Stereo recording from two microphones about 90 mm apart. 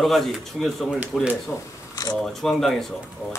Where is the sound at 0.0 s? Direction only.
Centre (ahead or behind).